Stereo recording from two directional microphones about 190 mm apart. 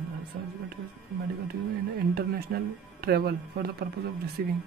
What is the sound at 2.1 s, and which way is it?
Speech, 55° right (ahead or behind).